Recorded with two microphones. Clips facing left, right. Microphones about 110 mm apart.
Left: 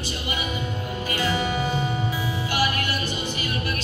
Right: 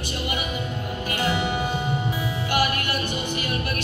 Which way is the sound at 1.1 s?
55° right (ahead or behind).